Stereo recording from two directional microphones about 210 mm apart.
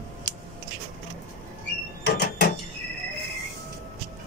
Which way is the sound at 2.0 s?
50° left (ahead or behind).